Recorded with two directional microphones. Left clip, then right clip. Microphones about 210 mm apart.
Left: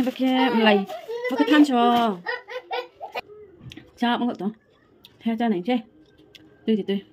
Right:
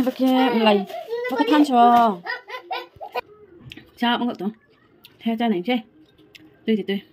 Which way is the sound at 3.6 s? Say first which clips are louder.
Right 2 dB; 5° right (ahead or behind).